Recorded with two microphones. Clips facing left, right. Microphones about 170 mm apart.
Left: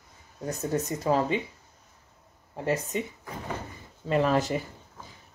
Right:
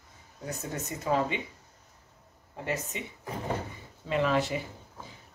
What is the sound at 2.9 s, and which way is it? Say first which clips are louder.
Speech: left 5 dB; 40° left (ahead or behind).